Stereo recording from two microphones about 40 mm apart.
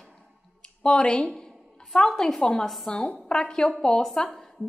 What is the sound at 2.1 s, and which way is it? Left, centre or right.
A woman's voice, centre.